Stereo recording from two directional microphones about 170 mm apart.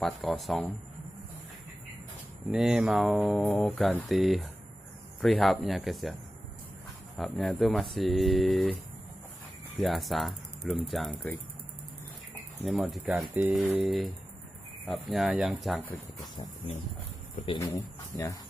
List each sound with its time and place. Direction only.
0.0 s speech: centre (ahead or behind)
2.5 s speech: centre (ahead or behind)
7.2 s speech: centre (ahead or behind)
9.8 s speech: centre (ahead or behind)
12.6 s speech: centre (ahead or behind)
17.6 s speech: 20° left (ahead or behind)